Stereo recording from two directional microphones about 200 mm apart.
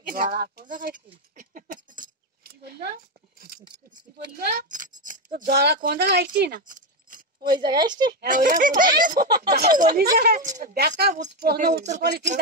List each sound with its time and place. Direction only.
0.1 s speech: 45° right (ahead or behind)
1.3 s keys jangling: 40° right (ahead or behind)
3.3 s a sound: 45° right (ahead or behind)
3.6 s speech: 20° right (ahead or behind)
4.6 s speech: 40° right (ahead or behind)
7.5 s speech: 20° right (ahead or behind)
8.2 s speech: 45° right (ahead or behind)